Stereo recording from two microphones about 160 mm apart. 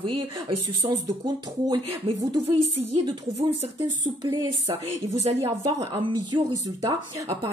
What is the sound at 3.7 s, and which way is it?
Speech, 25° right (ahead or behind).